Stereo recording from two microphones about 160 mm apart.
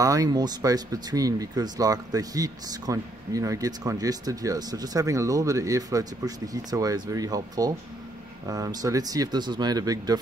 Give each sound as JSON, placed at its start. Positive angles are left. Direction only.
{"t": 0.0, "sound": "speech", "side_deg": -20}